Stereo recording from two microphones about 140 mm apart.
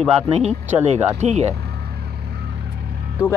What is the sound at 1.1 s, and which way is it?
Speech, 55° right (ahead or behind).